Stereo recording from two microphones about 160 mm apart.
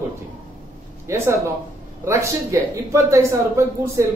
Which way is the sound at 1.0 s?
15° right (ahead or behind).